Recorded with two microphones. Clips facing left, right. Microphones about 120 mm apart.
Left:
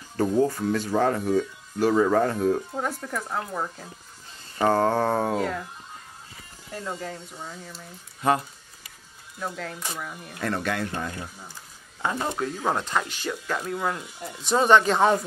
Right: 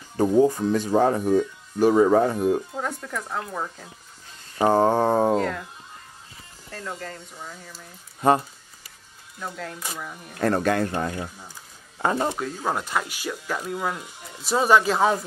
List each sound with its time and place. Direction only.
0.2 s speech: 15° right (ahead or behind)
2.7 s speech: 5° left (ahead or behind)
4.6 s speech: 15° right (ahead or behind)
5.3 s speech: 5° left (ahead or behind)
6.7 s speech: 15° left (ahead or behind)
9.4 s speech: centre (ahead or behind)
10.4 s speech: 40° right (ahead or behind)
12.4 s speech: centre (ahead or behind)